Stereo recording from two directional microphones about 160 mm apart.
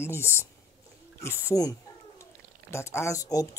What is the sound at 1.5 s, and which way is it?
Speech, 25° left (ahead or behind).